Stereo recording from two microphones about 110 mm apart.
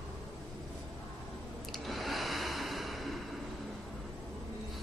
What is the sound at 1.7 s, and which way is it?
Breathing, centre (ahead or behind).